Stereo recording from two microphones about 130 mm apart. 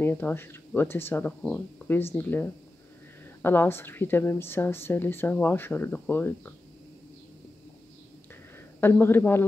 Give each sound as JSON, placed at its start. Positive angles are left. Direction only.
{"t": 0.0, "sound": "a woman's voice", "side_deg": 15}
{"t": 8.8, "sound": "a woman's voice", "side_deg": 15}